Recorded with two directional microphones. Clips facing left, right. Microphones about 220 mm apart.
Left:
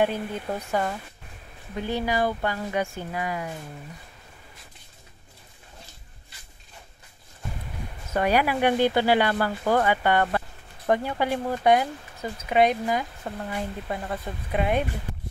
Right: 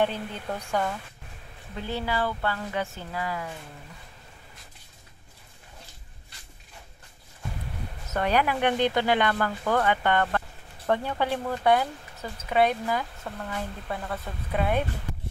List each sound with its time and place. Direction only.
0.0 s speech: 10° left (ahead or behind)
8.1 s speech: 10° left (ahead or behind)